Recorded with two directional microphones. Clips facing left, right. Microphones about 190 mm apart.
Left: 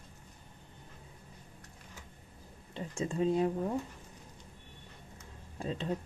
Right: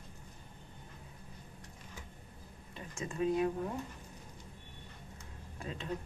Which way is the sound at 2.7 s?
30° left (ahead or behind).